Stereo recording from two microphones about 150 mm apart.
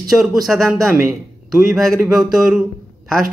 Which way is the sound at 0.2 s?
5° right (ahead or behind).